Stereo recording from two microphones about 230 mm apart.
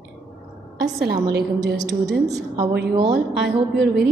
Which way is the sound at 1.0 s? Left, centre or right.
Right.